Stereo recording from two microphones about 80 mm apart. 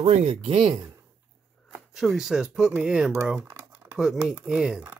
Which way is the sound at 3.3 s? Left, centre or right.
Right.